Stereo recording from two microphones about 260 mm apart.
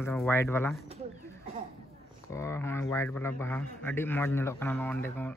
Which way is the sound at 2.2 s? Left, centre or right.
Centre.